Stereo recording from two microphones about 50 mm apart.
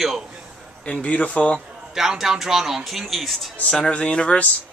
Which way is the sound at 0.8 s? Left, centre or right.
Left.